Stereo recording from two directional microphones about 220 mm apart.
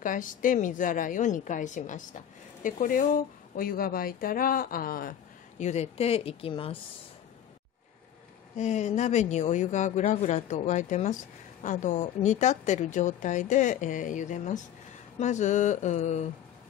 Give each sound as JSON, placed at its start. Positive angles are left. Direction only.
{"t": 0.0, "sound": "a woman's voice", "side_deg": 35}
{"t": 5.6, "sound": "a woman's voice", "side_deg": 30}
{"t": 8.5, "sound": "a woman's voice", "side_deg": 30}